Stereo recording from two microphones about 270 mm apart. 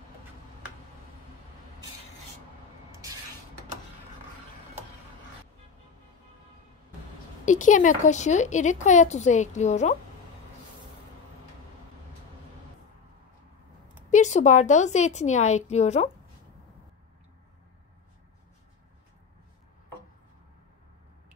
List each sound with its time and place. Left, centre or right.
7.4 s speech: left
14.1 s speech: left